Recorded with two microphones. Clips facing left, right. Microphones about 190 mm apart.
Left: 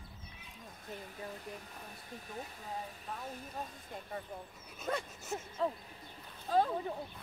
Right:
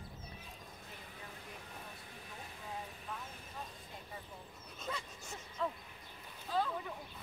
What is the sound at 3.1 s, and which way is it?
Speech, 40° left (ahead or behind).